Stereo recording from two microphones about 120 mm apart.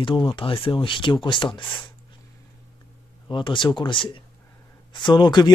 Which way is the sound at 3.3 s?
40° left (ahead or behind).